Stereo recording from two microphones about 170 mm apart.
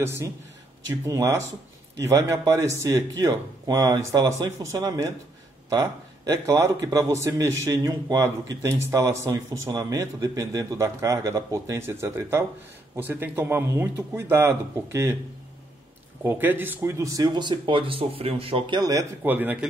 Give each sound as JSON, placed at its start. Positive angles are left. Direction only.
{"t": 0.0, "sound": "a man's voice", "side_deg": -15}
{"t": 16.3, "sound": "a man's voice", "side_deg": -10}
{"t": 19.2, "sound": "speech", "side_deg": -10}